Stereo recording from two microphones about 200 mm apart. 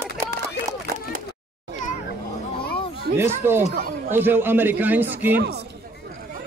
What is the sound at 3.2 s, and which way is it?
A man's voice, 10° right (ahead or behind).